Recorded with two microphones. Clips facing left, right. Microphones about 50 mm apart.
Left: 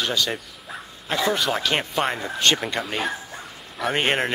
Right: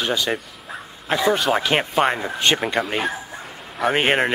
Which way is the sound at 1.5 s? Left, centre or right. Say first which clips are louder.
Right 4 dB; centre.